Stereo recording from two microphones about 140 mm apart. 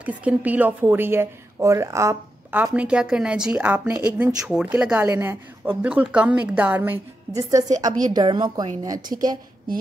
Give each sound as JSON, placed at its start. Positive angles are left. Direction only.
{"t": 0.0, "sound": "a woman's voice", "side_deg": -10}
{"t": 2.6, "sound": "a woman's voice", "side_deg": -10}
{"t": 7.3, "sound": "speech", "side_deg": -25}